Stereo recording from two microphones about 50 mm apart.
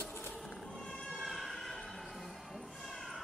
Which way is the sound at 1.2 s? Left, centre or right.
Centre.